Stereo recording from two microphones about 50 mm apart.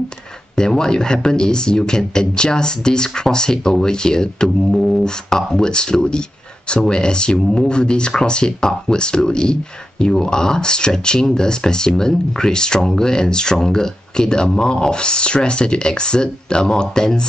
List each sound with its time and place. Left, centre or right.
0.6 s speech: centre